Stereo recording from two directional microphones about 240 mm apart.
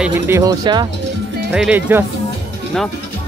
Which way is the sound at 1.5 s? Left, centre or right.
Centre.